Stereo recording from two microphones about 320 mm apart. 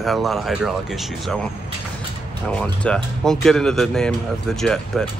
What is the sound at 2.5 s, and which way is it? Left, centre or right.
Speech, centre.